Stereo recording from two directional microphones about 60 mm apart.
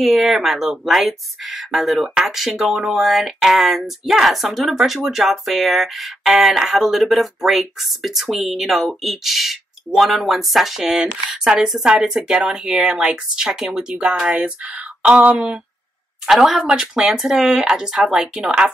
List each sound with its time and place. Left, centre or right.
0.0 s speech: centre
16.3 s speech: centre